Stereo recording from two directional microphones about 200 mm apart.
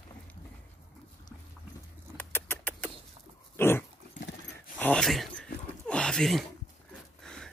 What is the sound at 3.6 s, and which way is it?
Dog, 10° left (ahead or behind).